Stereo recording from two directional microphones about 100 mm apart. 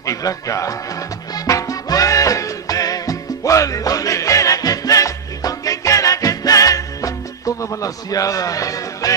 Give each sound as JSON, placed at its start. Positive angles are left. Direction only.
{"t": 0.0, "sound": "speech", "side_deg": 35}
{"t": 1.3, "sound": "music", "side_deg": 35}